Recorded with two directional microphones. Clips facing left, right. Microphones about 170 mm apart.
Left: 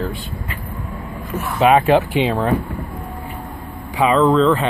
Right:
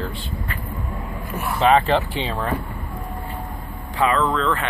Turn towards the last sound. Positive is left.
turn(degrees=25)  # may be behind; listen again after turning